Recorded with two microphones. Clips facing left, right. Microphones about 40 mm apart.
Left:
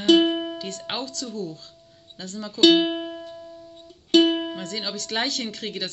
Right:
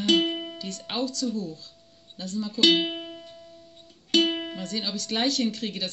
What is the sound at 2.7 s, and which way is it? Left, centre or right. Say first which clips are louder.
Music: left 5 dB; centre.